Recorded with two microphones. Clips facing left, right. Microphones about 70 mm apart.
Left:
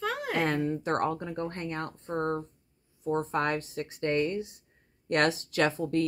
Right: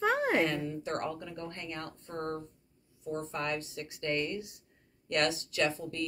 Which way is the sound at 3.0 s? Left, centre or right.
Left.